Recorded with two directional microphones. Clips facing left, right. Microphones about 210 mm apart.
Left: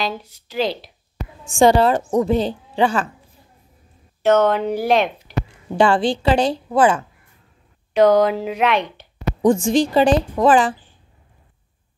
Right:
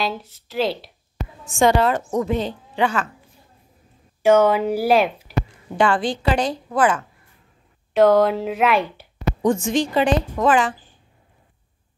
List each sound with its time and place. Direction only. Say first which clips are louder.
0.0 s speech: even; centre (ahead or behind)
1.5 s a woman's voice: left 3 dB; 30° left (ahead or behind)
4.2 s speech: right 1 dB; 10° right (ahead or behind)
5.8 s a woman's voice: left 3 dB; 30° left (ahead or behind)
7.9 s speech: left 1 dB; centre (ahead or behind)
9.4 s a woman's voice: left 4 dB; 30° left (ahead or behind)